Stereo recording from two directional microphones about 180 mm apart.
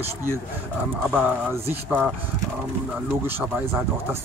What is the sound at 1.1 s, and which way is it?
Speech, 10° right (ahead or behind).